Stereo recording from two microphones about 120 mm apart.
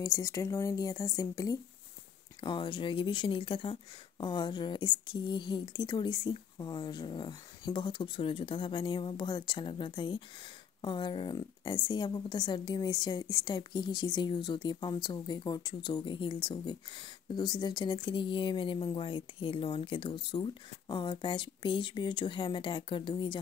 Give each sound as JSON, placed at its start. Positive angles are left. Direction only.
{"t": 0.0, "sound": "a woman's voice", "side_deg": 25}
{"t": 2.4, "sound": "speech", "side_deg": 40}